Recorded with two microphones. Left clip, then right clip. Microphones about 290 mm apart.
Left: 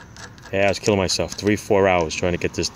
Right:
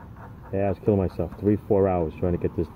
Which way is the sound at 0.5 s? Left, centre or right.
Centre.